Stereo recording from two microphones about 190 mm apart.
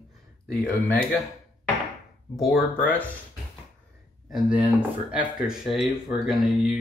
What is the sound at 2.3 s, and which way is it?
Speech, 15° left (ahead or behind).